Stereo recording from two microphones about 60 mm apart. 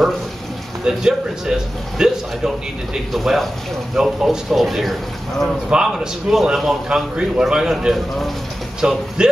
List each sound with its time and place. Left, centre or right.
0.8 s a man's voice: centre
3.1 s a man's voice: centre